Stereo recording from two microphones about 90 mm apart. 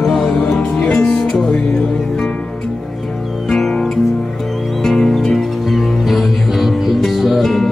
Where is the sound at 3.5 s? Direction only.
5° left (ahead or behind).